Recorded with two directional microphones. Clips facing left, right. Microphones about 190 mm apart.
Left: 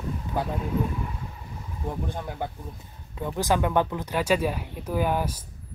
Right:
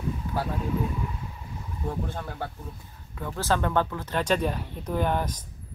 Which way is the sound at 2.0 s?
15° left (ahead or behind).